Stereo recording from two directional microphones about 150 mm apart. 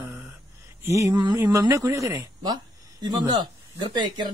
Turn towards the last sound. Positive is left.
turn(degrees=-30)  # may be behind; listen again after turning